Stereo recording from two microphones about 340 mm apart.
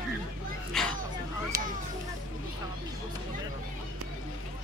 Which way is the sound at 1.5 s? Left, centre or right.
Right.